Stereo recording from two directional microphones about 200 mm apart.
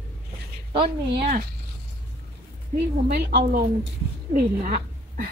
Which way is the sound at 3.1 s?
45° right (ahead or behind).